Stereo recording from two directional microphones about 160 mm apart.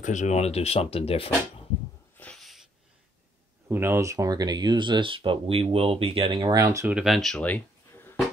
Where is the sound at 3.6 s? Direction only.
15° right (ahead or behind).